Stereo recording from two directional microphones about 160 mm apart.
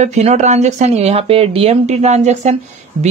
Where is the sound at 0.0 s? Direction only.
45° right (ahead or behind).